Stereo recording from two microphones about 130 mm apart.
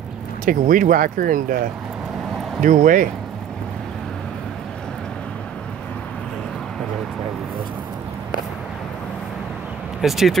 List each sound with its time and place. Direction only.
0.5 s speech: 90° right
2.6 s speech: 90° right
10.0 s speech: centre (ahead or behind)